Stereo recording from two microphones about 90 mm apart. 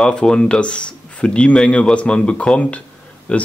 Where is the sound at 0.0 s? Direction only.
10° left (ahead or behind).